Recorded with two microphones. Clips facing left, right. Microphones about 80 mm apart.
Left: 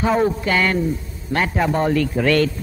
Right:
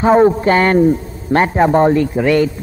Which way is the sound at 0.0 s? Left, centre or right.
Right.